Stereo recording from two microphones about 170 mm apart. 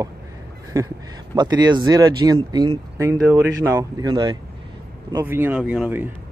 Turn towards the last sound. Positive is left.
turn(degrees=0)  # may be behind; listen again after turning